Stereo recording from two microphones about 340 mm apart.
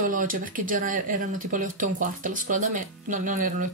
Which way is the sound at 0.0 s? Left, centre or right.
Right.